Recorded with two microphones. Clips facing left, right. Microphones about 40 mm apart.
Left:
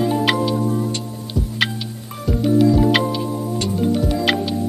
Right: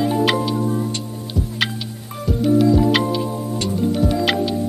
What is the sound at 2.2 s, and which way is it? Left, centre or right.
Music, centre.